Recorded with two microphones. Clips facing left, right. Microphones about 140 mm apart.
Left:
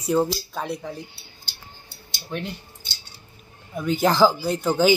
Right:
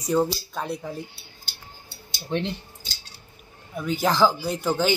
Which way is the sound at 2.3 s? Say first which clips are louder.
Right 4 dB; 25° right (ahead or behind).